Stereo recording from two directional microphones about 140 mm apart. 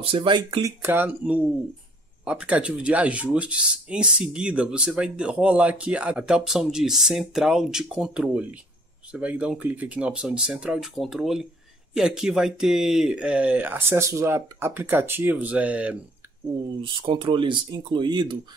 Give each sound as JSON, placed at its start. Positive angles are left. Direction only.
{"t": 0.0, "sound": "speech", "side_deg": -40}
{"t": 0.5, "sound": "speech", "side_deg": -20}
{"t": 16.8, "sound": "speech", "side_deg": -35}